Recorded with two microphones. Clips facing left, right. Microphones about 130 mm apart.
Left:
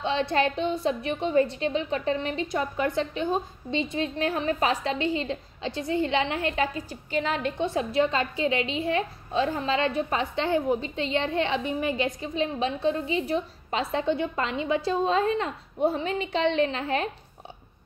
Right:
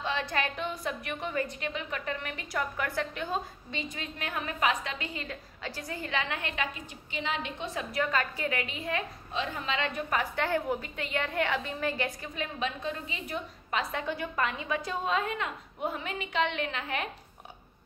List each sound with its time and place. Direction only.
0.0 s a woman's voice: 25° left (ahead or behind)